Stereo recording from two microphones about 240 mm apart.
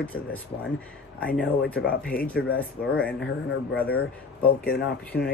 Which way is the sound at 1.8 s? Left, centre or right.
Left.